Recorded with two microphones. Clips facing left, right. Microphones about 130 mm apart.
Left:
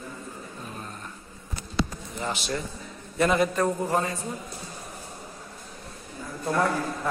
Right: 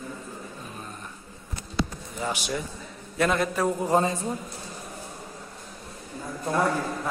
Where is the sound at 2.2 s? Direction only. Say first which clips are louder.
Right 1 dB; 10° right (ahead or behind).